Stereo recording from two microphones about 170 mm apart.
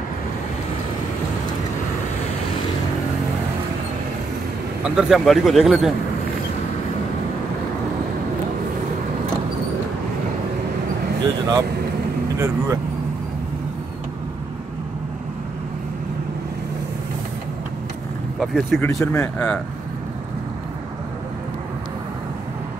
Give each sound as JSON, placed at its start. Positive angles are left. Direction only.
{"t": 4.8, "sound": "speech", "side_deg": -5}
{"t": 11.2, "sound": "speech", "side_deg": -20}
{"t": 18.4, "sound": "speech", "side_deg": 0}
{"t": 18.8, "sound": "speech", "side_deg": 15}